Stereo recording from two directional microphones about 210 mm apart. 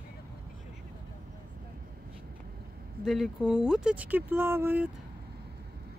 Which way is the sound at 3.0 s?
Centre (ahead or behind).